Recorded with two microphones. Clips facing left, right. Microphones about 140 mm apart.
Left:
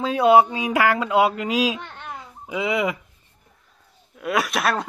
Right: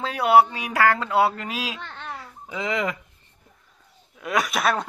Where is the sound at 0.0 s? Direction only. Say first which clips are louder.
Left 2 dB; 20° left (ahead or behind).